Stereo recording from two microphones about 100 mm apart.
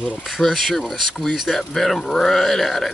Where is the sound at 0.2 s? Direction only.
Centre (ahead or behind).